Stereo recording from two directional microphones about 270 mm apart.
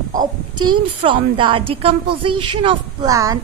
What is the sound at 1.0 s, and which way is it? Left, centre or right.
A woman's voice, centre.